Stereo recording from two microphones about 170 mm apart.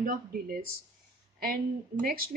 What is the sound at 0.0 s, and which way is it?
Speech, 55° right (ahead or behind).